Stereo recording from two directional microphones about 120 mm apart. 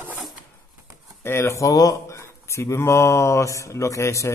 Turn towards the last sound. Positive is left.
turn(degrees=25)  # may be behind; listen again after turning